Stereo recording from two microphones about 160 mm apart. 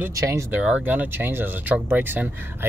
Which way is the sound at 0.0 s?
20° right (ahead or behind).